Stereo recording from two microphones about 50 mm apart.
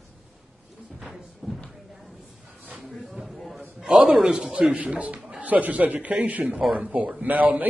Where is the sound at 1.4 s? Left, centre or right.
Centre.